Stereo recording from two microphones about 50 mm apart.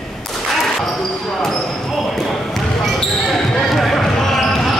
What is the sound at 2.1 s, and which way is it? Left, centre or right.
Basketball bounce, centre.